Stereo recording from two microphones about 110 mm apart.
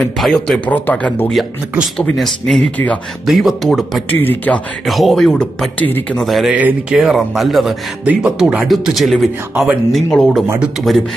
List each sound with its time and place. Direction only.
0.0 s speech: 5° left (ahead or behind)
0.7 s speech: 15° left (ahead or behind)
2.0 s speech: 5° left (ahead or behind)
4.1 s speech: 15° left (ahead or behind)
4.8 s speech: centre (ahead or behind)
6.5 s speech: 10° right (ahead or behind)